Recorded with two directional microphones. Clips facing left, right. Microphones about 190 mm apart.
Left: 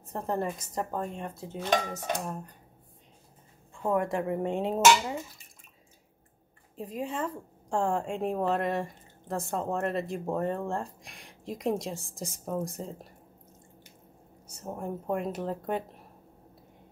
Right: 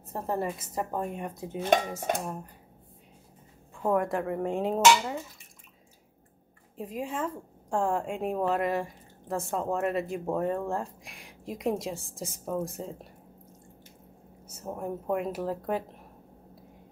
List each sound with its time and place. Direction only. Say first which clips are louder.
0.1 s speech: even; 5° right (ahead or behind)
1.6 s dishes: right 3 dB; 50° right (ahead or behind)
2.2 s a woman's voice: even; 5° right (ahead or behind)
3.8 s a woman's voice: right 1 dB; centre (ahead or behind)
6.8 s a woman's voice: even; centre (ahead or behind)
14.6 s a woman's voice: right 1 dB; centre (ahead or behind)